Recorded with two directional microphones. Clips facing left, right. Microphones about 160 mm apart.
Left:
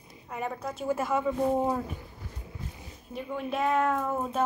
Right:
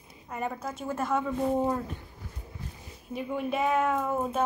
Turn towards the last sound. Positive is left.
turn(degrees=-5)  # may be behind; listen again after turning